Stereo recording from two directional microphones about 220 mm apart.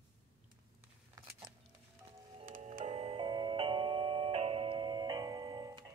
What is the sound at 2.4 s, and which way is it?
Music, 30° right (ahead or behind).